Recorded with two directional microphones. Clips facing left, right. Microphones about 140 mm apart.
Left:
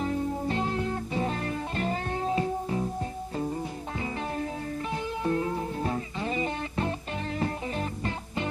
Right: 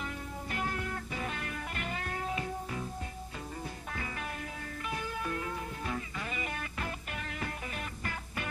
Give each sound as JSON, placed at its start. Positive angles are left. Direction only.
{"t": 0.0, "sound": "music", "side_deg": 30}
{"t": 3.9, "sound": "music", "side_deg": 25}